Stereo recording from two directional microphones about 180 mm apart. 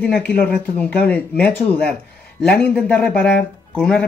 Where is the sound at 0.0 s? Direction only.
5° left (ahead or behind).